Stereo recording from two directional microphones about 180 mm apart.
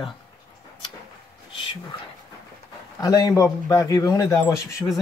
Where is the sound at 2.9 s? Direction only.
20° left (ahead or behind).